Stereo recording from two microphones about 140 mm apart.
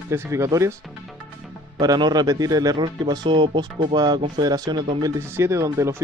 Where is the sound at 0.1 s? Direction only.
20° right (ahead or behind).